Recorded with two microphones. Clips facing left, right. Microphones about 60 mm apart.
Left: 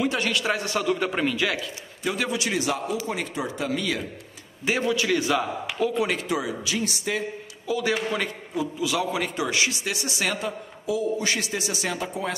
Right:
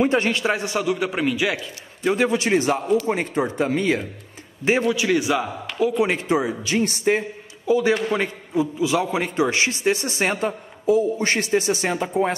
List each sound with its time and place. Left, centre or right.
0.0 s a man's voice: right
0.7 s a man's voice: centre
1.6 s a man's voice: right
5.9 s a man's voice: right
8.1 s a man's voice: right